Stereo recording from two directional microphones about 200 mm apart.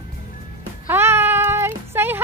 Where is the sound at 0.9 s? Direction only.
10° right (ahead or behind).